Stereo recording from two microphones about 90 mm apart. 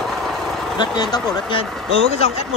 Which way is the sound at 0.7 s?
55° left (ahead or behind).